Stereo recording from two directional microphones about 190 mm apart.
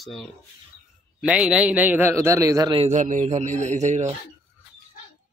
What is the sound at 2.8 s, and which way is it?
A man's voice, 40° right (ahead or behind).